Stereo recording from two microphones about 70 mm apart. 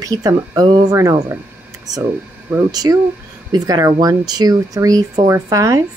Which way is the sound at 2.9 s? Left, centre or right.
Right.